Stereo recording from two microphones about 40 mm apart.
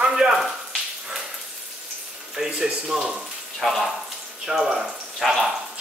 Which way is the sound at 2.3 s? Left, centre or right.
Centre.